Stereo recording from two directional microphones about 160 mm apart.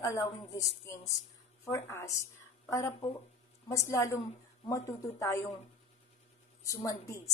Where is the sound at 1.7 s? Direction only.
15° left (ahead or behind).